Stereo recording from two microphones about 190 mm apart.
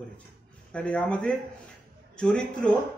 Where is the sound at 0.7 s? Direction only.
5° left (ahead or behind).